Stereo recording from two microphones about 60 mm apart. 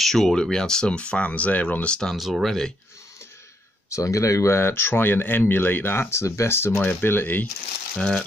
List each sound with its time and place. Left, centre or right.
0.0 s speech: centre; by 2.0 s left
2.1 s speech: centre
3.9 s speech: left
4.6 s speech: left
6.8 s speech: left
8.0 s speech: centre